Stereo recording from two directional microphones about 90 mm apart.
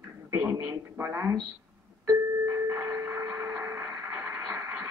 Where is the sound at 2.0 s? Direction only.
25° right (ahead or behind).